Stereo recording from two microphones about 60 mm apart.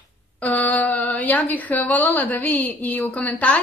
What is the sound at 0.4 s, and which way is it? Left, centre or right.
A woman's voice, left.